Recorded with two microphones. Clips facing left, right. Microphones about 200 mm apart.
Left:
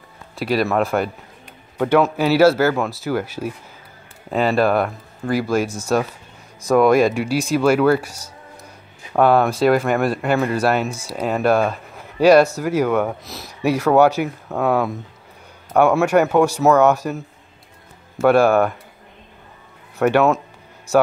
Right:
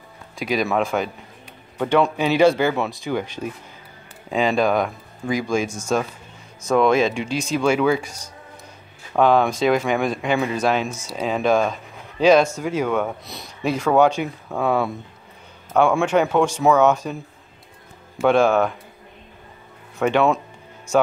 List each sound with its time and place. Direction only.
0.4 s speech: 5° left (ahead or behind)
18.2 s speech: 10° left (ahead or behind)
20.0 s speech: 5° left (ahead or behind)